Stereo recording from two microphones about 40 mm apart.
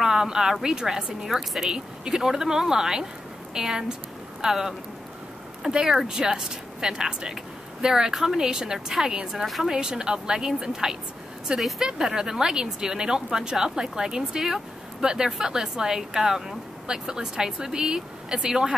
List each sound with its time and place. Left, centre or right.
0.0 s speech: centre